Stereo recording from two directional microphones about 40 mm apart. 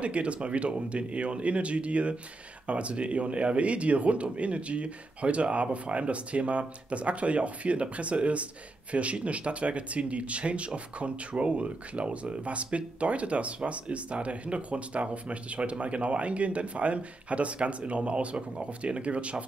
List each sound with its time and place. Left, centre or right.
0.0 s speech: right